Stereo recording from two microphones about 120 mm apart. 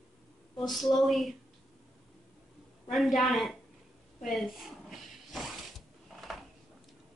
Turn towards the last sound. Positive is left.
turn(degrees=0)  # may be behind; listen again after turning